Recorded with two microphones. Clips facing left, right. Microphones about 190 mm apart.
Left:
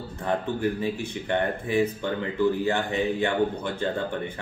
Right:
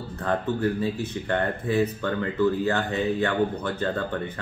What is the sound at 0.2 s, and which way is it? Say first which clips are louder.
A man's voice: right 1 dB; 15° left (ahead or behind).